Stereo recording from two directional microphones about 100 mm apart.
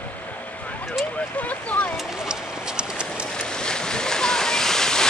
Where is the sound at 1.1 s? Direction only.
15° left (ahead or behind).